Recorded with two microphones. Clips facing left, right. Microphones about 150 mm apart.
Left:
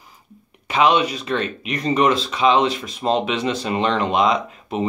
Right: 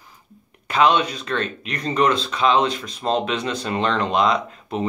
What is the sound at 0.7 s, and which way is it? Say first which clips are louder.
Speech: left 1 dB; 5° left (ahead or behind).